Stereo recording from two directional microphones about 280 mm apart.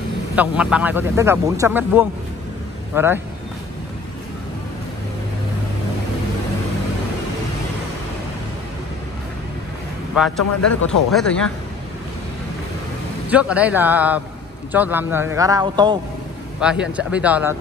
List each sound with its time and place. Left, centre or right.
0.4 s speech: centre
10.1 s a man's voice: centre
10.6 s speech: left
11.1 s a man's voice: centre
13.3 s a man's voice: centre
16.6 s a man's voice: centre